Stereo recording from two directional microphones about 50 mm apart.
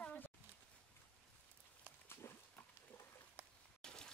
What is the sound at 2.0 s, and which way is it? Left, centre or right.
Pig, left.